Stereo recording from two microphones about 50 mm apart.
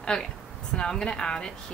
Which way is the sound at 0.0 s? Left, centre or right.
Centre.